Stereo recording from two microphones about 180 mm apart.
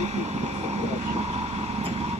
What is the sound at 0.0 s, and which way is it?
Vehicle, 40° right (ahead or behind).